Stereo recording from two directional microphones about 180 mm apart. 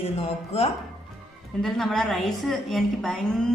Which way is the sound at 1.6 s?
Centre (ahead or behind).